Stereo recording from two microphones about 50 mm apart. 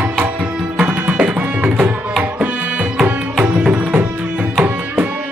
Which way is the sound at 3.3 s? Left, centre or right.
Centre.